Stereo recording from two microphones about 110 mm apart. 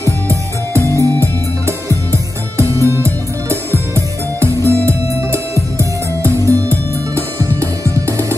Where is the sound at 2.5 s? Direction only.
25° right (ahead or behind).